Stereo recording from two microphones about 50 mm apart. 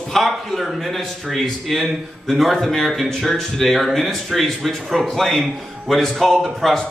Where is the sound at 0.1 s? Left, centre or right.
Centre.